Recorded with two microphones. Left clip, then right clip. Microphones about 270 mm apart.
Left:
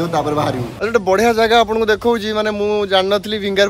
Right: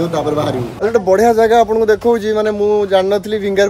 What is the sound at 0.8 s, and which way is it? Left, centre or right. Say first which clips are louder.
Speech: right 3 dB; centre.